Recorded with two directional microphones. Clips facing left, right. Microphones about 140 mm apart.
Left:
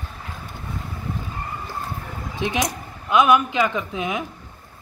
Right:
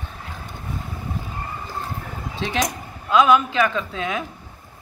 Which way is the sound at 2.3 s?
15° left (ahead or behind).